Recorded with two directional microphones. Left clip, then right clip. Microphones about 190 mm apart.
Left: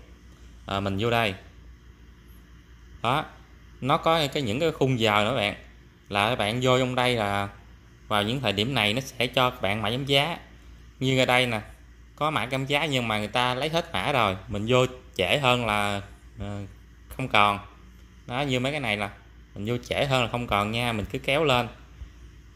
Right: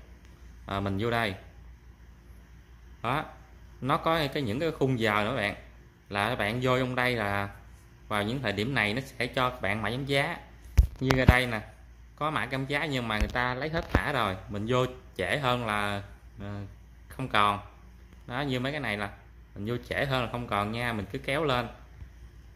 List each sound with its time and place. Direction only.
0.7 s speech: 10° left (ahead or behind)
3.0 s speech: 15° left (ahead or behind)